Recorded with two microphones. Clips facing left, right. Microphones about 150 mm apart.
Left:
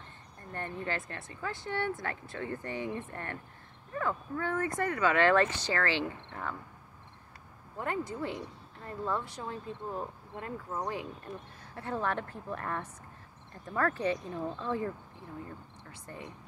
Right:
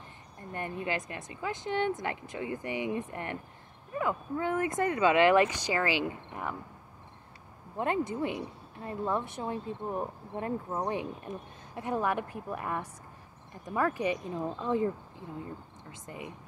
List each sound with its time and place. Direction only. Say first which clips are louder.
0.5 s speech: right 2 dB; 15° right (ahead or behind)
7.7 s a woman's voice: right 5 dB; 20° right (ahead or behind)